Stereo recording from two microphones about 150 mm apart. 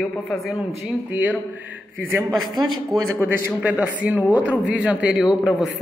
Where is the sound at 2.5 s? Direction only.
30° right (ahead or behind).